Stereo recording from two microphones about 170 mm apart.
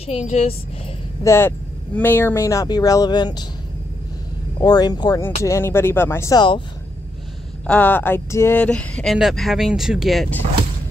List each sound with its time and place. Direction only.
0.0 s a woman's voice: 35° left (ahead or behind)
1.2 s speech: 15° left (ahead or behind)
4.6 s speech: 25° left (ahead or behind)
7.6 s speech: 10° left (ahead or behind)